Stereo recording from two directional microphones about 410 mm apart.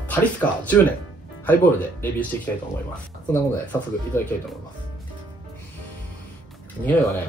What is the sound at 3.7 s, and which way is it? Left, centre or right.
Speech, centre.